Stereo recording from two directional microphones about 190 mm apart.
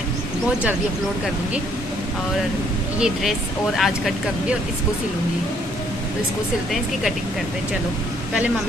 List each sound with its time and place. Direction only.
3.0 s speech: centre (ahead or behind)
6.7 s speech: centre (ahead or behind)